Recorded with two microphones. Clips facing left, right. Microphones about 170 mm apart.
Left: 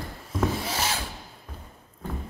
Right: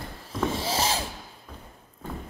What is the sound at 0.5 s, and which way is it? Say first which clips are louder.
Filing: right 3 dB; 30° right (ahead or behind).